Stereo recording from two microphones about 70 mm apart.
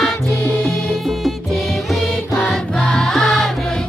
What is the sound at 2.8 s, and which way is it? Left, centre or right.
Music, centre.